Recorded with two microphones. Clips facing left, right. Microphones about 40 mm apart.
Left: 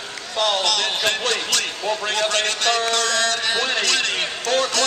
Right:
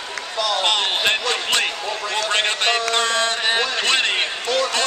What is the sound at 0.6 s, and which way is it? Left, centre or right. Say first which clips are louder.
Speech: right 2 dB; right.